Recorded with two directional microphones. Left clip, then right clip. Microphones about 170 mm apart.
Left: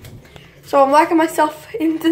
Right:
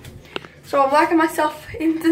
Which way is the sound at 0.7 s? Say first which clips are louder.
Left 4 dB; 15° left (ahead or behind).